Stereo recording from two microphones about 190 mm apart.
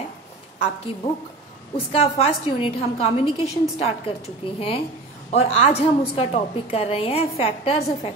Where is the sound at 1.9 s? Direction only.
30° left (ahead or behind).